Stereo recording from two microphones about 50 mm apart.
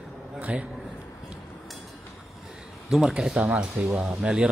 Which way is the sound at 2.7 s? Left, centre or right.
Centre.